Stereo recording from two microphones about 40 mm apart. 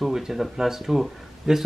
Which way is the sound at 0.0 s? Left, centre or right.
Centre.